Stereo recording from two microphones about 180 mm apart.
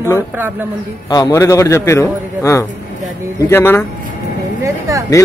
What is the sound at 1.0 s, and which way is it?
A man's voice, 20° left (ahead or behind).